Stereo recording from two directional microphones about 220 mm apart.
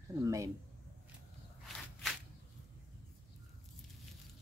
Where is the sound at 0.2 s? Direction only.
15° right (ahead or behind).